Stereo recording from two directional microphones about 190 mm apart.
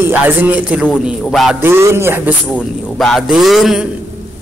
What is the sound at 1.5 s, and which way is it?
Speech, 15° right (ahead or behind).